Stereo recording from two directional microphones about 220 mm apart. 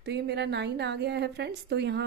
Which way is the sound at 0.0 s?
50° right (ahead or behind).